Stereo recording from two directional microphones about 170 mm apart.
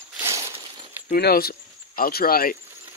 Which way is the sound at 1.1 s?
60° left (ahead or behind).